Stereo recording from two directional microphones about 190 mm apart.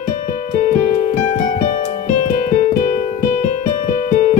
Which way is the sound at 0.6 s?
40° left (ahead or behind).